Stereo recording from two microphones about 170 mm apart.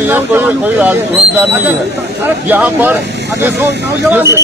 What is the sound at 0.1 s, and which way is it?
A man's voice, 10° right (ahead or behind).